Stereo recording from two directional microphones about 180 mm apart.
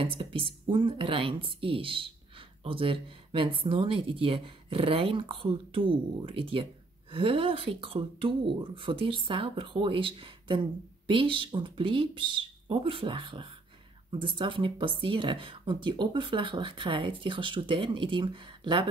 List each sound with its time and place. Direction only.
0.0 s speech: 30° right (ahead or behind)